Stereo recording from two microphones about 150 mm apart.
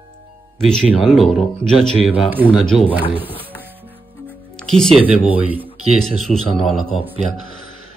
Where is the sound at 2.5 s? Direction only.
5° left (ahead or behind).